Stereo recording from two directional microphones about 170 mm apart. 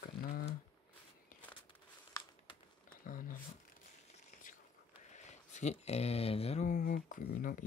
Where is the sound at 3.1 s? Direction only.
55° left (ahead or behind).